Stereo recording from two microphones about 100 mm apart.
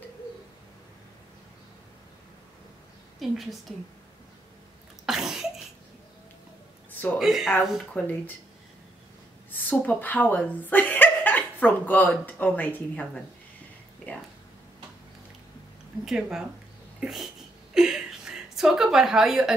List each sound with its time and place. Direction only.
3.2 s a woman's voice: centre (ahead or behind)
5.0 s sneeze: 5° right (ahead or behind)
6.9 s a sound: 20° left (ahead or behind)
7.2 s a woman's voice: 5° right (ahead or behind)
8.0 s speech: 15° left (ahead or behind)
9.5 s speech: 20° left (ahead or behind)
14.1 s a sound: 15° left (ahead or behind)
16.1 s a woman's voice: 5° right (ahead or behind)
17.7 s a sound: 5° right (ahead or behind)